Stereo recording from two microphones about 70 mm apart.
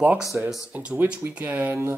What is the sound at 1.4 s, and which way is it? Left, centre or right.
Speech, right.